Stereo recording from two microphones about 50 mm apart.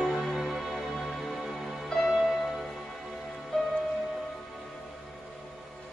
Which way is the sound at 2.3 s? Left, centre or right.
Centre.